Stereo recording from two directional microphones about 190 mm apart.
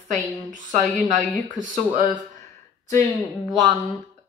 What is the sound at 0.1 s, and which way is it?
A woman's voice, 40° right (ahead or behind).